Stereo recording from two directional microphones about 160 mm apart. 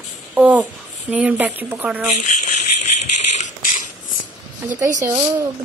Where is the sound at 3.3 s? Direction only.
50° left (ahead or behind).